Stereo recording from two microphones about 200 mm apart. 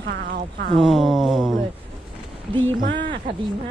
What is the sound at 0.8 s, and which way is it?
Speech, centre (ahead or behind).